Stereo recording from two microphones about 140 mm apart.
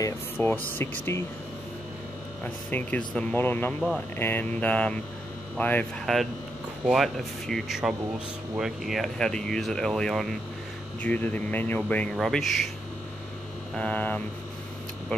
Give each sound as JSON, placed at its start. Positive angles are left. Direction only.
{"t": 0.0, "sound": "speech", "side_deg": 15}
{"t": 2.4, "sound": "speech", "side_deg": 10}
{"t": 13.7, "sound": "speech", "side_deg": 10}